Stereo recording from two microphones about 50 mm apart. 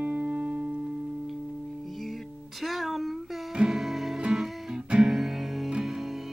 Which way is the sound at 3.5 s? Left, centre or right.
Centre.